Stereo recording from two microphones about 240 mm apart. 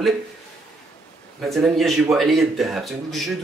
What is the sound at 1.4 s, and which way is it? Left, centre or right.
Speech, centre.